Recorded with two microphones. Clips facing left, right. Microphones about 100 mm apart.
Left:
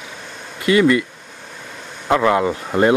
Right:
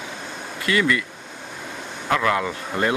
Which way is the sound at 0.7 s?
25° left (ahead or behind).